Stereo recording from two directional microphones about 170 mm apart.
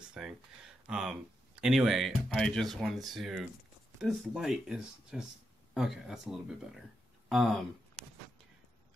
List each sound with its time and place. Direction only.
0.1 s speech: 5° right (ahead or behind)